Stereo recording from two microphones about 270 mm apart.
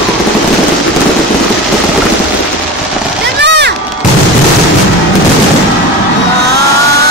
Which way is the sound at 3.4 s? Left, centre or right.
Right.